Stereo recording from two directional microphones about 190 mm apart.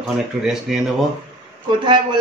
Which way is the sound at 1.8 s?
25° right (ahead or behind).